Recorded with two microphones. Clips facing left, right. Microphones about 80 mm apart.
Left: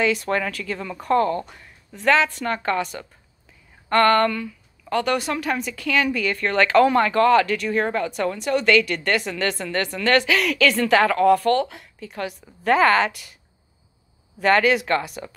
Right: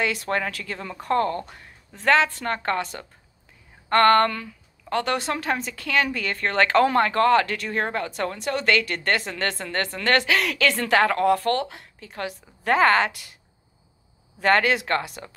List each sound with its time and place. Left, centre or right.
0.3 s a woman's voice: right
14.4 s speech: right